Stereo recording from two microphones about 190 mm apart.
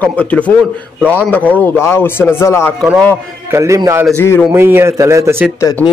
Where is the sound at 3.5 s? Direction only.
15° right (ahead or behind).